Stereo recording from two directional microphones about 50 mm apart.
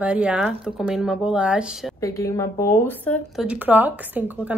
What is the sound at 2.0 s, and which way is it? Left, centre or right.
Speech, left.